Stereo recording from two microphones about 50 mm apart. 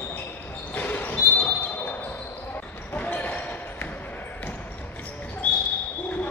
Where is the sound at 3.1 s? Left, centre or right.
Left.